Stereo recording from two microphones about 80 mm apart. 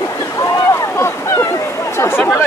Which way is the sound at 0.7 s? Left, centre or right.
Left.